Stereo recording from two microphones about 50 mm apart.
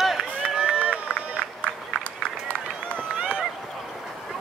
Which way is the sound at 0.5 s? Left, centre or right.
Right.